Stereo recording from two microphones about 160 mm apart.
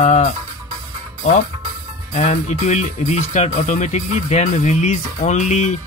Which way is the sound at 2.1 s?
45° left (ahead or behind).